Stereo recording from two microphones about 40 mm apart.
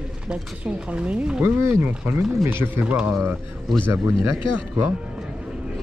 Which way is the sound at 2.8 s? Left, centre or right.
Right.